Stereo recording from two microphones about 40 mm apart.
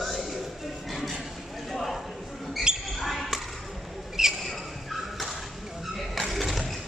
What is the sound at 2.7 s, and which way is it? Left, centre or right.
Basketball bounce, centre.